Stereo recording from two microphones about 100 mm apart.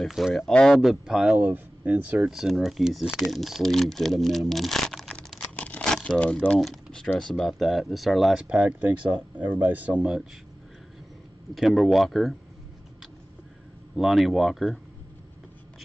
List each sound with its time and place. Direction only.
0.0 s speech: centre (ahead or behind)
0.7 s speech: 5° right (ahead or behind)
2.3 s speech: centre (ahead or behind)
5.6 s crumpling: 15° left (ahead or behind)
6.0 s speech: 10° left (ahead or behind)
8.5 s speech: 15° right (ahead or behind)
11.5 s speech: centre (ahead or behind)
13.9 s speech: centre (ahead or behind)